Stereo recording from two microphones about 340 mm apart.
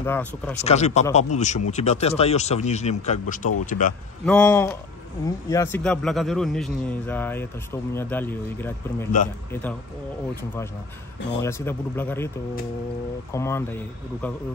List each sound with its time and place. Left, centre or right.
0.0 s a man's voice: centre
0.6 s speech: centre
4.3 s a man's voice: centre
11.4 s speech: centre
13.3 s speech: centre